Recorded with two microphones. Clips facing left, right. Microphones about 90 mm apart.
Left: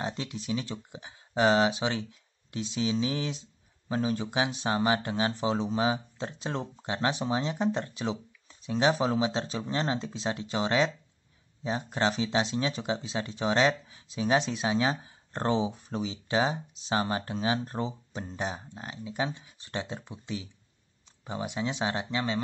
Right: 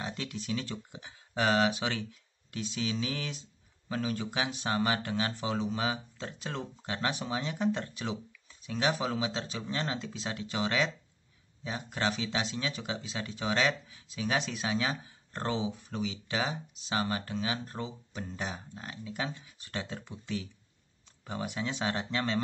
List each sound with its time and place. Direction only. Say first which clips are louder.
0.0 s speech: left 3 dB; 25° left (ahead or behind)